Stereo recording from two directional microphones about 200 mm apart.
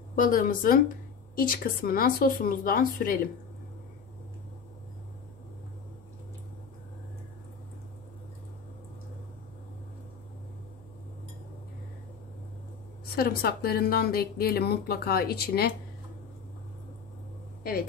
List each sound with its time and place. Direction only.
0.1 s a woman's voice: 45° left (ahead or behind)
13.1 s a woman's voice: 50° left (ahead or behind)